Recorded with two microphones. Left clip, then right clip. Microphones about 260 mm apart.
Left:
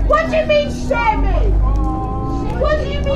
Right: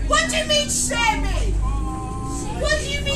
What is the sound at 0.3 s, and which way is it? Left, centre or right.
Speech, right.